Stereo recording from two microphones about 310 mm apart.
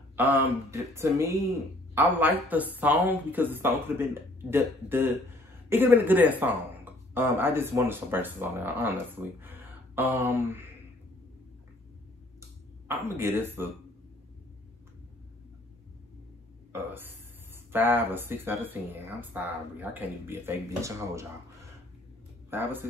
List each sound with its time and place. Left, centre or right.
0.1 s speech: centre
12.4 s a sound: centre
16.7 s speech: centre
22.5 s speech: centre